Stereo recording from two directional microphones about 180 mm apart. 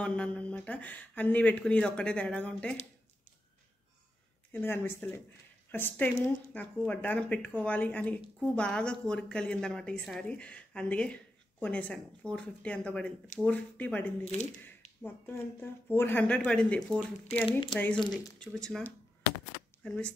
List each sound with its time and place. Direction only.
0.0 s speech: 5° left (ahead or behind)
4.5 s speech: 10° left (ahead or behind)
14.2 s speech: 40° left (ahead or behind)
15.0 s speech: 10° left (ahead or behind)
17.5 s speech: 25° left (ahead or behind)
17.7 s speech: 10° left (ahead or behind)
18.0 s speech: 20° left (ahead or behind)
18.4 s speech: centre (ahead or behind)